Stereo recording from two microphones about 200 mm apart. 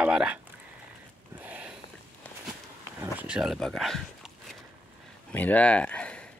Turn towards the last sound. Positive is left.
turn(degrees=5)  # may be behind; listen again after turning